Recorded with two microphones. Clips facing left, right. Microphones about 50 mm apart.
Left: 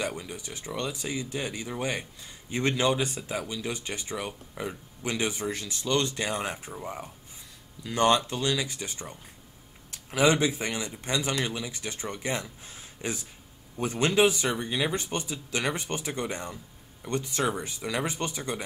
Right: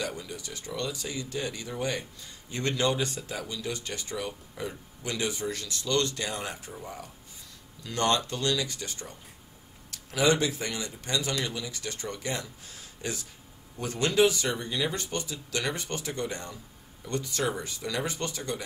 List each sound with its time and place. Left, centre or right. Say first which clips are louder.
0.0 s speech: left 2 dB; left